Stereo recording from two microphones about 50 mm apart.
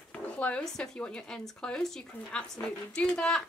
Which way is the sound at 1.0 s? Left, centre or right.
Left.